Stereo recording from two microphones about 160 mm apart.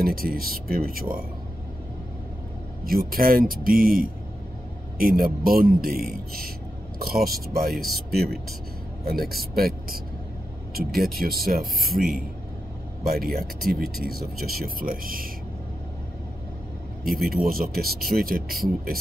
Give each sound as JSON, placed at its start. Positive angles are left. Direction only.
{"t": 0.0, "sound": "speech", "side_deg": -65}
{"t": 2.8, "sound": "speech", "side_deg": -65}
{"t": 17.0, "sound": "speech", "side_deg": -70}